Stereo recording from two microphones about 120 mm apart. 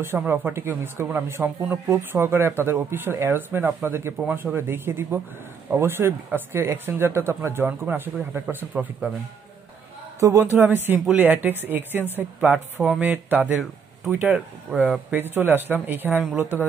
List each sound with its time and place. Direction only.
0.3 s speech: 20° right (ahead or behind)
10.2 s speech: 20° right (ahead or behind)